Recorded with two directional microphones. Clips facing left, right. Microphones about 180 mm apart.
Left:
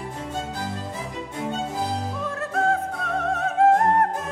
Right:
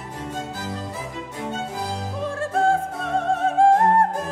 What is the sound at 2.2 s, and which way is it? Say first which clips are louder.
Opera: right 4 dB; 30° right (ahead or behind).